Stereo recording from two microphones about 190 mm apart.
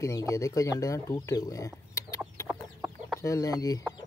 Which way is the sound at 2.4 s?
15° right (ahead or behind).